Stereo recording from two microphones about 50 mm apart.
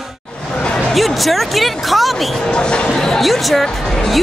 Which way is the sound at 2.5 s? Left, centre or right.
Centre.